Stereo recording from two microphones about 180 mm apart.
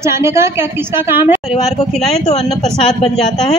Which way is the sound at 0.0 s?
15° right (ahead or behind).